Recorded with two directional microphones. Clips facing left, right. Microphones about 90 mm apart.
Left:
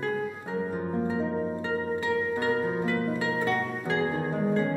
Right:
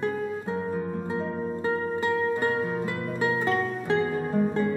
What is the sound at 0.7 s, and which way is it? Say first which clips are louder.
Harp: even; 25° left (ahead or behind).